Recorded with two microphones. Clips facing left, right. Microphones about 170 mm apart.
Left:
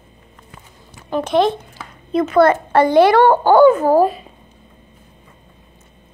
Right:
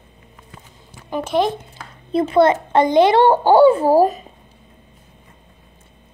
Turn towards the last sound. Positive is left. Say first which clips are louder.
# even
turn(degrees=-40)  # may be behind; listen again after turning